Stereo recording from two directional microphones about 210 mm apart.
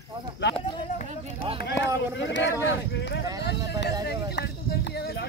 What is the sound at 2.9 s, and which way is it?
Speech, 55° left (ahead or behind).